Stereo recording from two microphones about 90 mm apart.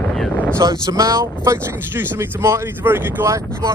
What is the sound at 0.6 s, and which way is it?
Speech, 40° right (ahead or behind).